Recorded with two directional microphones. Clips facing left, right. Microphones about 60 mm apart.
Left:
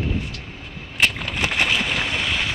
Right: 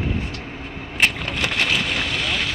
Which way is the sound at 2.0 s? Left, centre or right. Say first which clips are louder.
Even; left.